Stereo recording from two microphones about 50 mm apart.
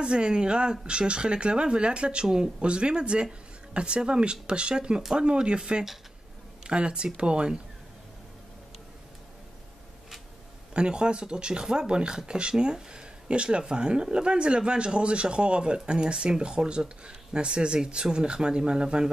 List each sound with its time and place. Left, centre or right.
0.0 s speech: centre
2.2 s speech: centre
10.7 s speech: centre